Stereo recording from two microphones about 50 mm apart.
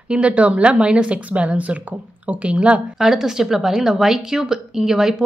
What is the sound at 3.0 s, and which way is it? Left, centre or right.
A woman's voice, centre.